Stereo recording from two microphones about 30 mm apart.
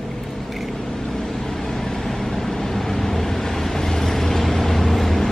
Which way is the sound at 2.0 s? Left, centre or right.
Centre.